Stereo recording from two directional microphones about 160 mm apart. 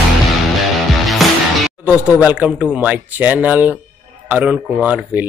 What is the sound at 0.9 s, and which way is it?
Music, centre (ahead or behind).